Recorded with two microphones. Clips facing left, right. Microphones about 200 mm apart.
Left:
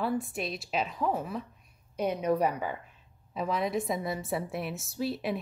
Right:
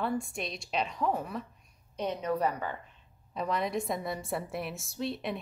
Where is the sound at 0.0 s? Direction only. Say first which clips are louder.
Left 2 dB; 5° left (ahead or behind).